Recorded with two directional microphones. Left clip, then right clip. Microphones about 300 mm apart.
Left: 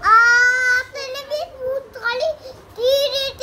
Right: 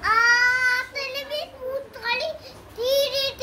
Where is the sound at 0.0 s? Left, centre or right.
Left.